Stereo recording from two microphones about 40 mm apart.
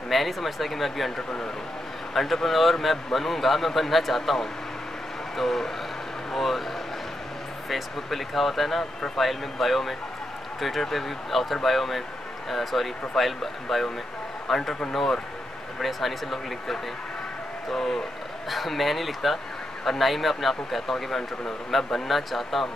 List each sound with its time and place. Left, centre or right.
0.1 s speech: centre
7.7 s speech: centre
15.8 s speech: centre